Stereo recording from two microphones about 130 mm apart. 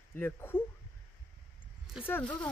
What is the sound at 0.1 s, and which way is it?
Speech, 15° left (ahead or behind).